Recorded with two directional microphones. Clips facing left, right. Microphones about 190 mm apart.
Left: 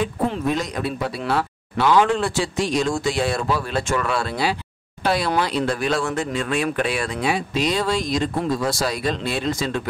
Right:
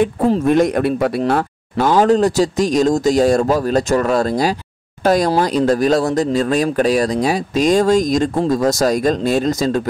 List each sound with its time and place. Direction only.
0.5 s speech: 55° right (ahead or behind)